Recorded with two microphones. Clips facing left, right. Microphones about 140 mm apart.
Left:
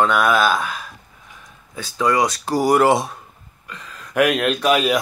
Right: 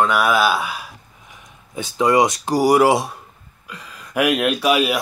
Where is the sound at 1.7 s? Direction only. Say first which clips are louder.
Right 3 dB; 20° right (ahead or behind); by 4.9 s 5° right (ahead or behind).